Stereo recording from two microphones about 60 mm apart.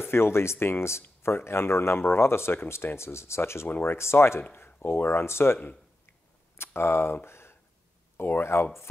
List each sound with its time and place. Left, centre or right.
0.0 s speech: left
3.6 s speech: left
4.6 s speech: left
6.6 s speech: left
7.2 s a sound: left
8.2 s speech: left